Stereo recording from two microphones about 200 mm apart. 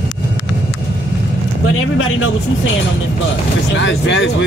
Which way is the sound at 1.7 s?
90° left.